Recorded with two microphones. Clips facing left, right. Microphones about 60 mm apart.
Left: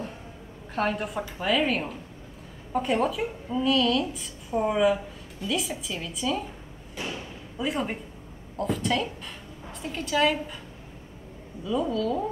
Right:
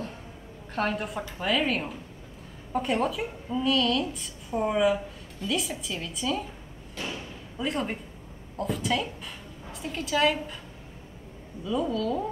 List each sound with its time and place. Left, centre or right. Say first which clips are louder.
0.7 s a woman's voice: left 1 dB; centre
7.0 s thump: left 1 dB; centre
8.5 s a woman's voice: left 2 dB; centre
11.6 s a woman's voice: left 1 dB; centre